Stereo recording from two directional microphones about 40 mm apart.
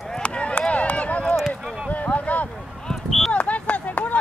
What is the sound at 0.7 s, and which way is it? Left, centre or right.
Run, left.